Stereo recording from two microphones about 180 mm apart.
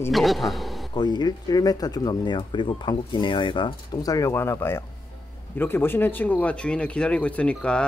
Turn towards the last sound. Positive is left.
turn(degrees=5)  # may be behind; listen again after turning